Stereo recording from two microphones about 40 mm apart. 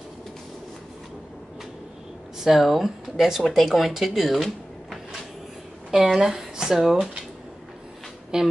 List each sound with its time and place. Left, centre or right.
2.5 s speech: centre
8.3 s a woman's voice: centre